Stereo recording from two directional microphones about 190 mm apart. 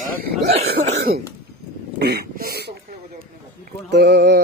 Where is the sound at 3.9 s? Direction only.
65° right (ahead or behind).